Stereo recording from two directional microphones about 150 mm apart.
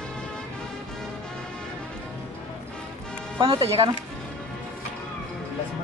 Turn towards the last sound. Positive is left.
turn(degrees=-35)  # may be behind; listen again after turning